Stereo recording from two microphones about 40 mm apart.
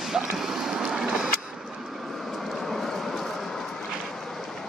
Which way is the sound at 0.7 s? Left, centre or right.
Centre.